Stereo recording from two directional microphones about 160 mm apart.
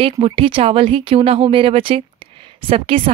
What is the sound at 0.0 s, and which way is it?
Speech, 35° right (ahead or behind).